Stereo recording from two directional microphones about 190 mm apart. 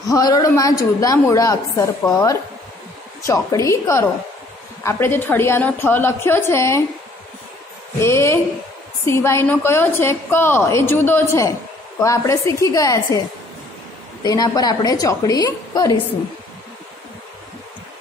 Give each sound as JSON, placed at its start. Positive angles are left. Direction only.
{"t": 0.1, "sound": "a woman's voice", "side_deg": 20}
{"t": 8.0, "sound": "a woman's voice", "side_deg": 15}
{"t": 14.2, "sound": "a woman's voice", "side_deg": 20}